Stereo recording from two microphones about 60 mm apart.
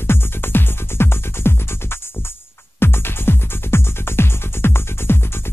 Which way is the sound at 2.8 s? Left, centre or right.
Left.